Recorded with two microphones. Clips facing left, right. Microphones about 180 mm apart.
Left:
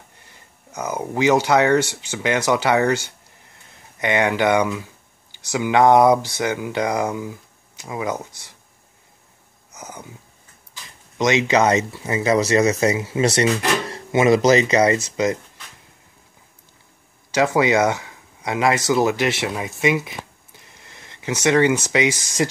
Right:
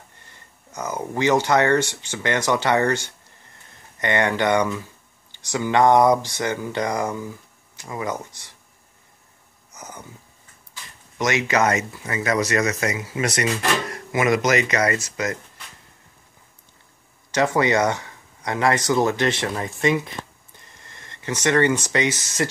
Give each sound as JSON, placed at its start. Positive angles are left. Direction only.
{"t": 0.7, "sound": "speech", "side_deg": 10}
{"t": 9.7, "sound": "a sound", "side_deg": 10}
{"t": 11.1, "sound": "speech", "side_deg": 20}
{"t": 17.6, "sound": "speech", "side_deg": 10}
{"t": 19.8, "sound": "a sound", "side_deg": 5}
{"t": 21.9, "sound": "speech", "side_deg": 10}